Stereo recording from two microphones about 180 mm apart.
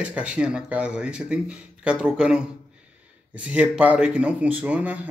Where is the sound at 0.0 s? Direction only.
5° right (ahead or behind).